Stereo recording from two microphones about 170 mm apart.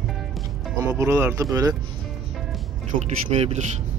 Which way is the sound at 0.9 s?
15° right (ahead or behind).